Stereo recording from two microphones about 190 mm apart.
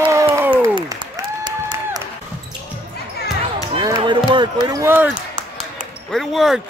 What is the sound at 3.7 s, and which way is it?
Basketball bounce, 25° right (ahead or behind).